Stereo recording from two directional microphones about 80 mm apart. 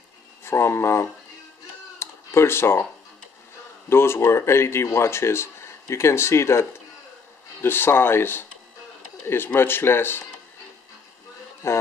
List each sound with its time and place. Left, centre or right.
0.4 s speech: left
2.0 s a sound: left
3.9 s speech: left
7.6 s speech: left
11.6 s speech: left